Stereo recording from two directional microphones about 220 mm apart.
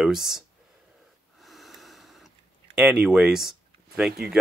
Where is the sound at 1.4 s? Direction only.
Centre (ahead or behind).